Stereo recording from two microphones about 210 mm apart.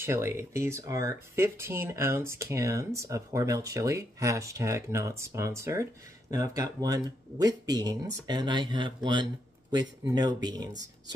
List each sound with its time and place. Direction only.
0.0 s speech: 10° right (ahead or behind)